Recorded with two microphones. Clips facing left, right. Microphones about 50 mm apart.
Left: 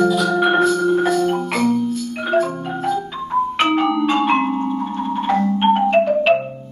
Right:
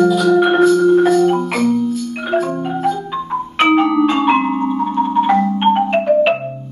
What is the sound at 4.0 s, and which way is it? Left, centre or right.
Marimba, centre.